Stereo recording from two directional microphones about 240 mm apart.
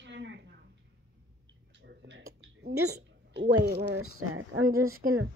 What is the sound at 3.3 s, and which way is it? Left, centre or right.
Speech, right.